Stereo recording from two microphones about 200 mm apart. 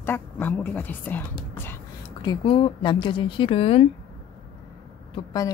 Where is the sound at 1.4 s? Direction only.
10° left (ahead or behind).